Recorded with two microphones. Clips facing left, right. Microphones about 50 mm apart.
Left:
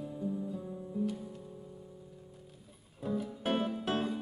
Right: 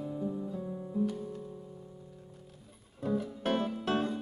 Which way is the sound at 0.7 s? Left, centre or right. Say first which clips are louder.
Right 5 dB; centre.